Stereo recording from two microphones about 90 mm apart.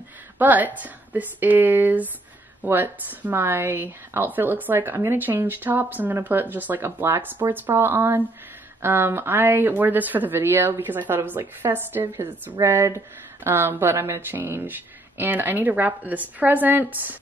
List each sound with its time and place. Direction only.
0.4 s speech: 20° right (ahead or behind)